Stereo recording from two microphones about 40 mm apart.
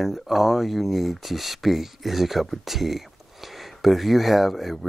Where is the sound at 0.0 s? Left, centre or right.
Centre.